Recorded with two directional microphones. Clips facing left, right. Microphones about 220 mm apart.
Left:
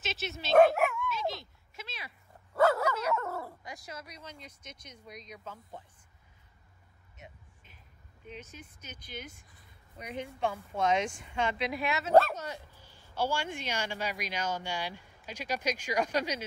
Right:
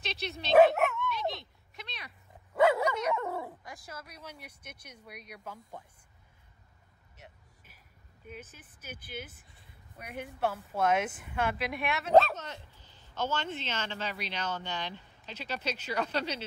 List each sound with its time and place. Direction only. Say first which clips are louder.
0.0 s dog: even; 5° left (ahead or behind)
2.5 s dog: right 1 dB; 20° right (ahead or behind)
2.9 s dog: even; 5° left (ahead or behind)
3.2 s dog: right 2 dB; 20° right (ahead or behind)
4.2 s speech: even; 10° right (ahead or behind)
8.8 s speech: right 3 dB; 5° right (ahead or behind); by 16.4 s 10° left (ahead or behind)